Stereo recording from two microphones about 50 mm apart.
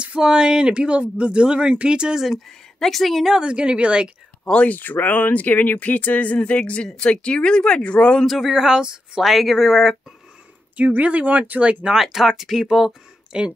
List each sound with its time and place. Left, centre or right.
0.0 s speech: centre
2.2 s speech: centre
3.3 s speech: centre
4.6 s speech: left; by 8.3 s centre
8.3 s speech: centre
8.5 s speech: centre
9.2 s speech: centre
10.8 s speech: right
11.8 s speech: centre